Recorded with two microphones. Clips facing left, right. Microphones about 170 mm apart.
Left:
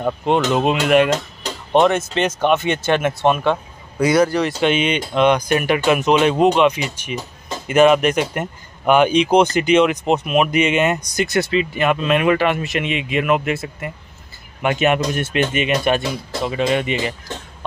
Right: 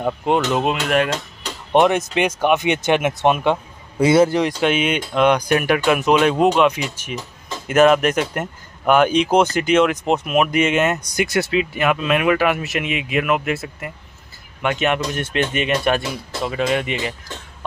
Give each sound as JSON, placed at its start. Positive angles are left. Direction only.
{"t": 0.0, "sound": "speech", "side_deg": -10}
{"t": 1.7, "sound": "speech", "side_deg": -15}
{"t": 4.6, "sound": "speech", "side_deg": -5}